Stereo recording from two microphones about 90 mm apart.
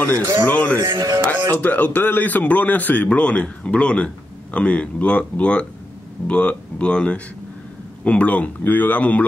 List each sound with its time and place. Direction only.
0.5 s a man's voice: 20° left (ahead or behind)
0.9 s speech: 45° right (ahead or behind)
1.2 s a man's voice: 15° left (ahead or behind)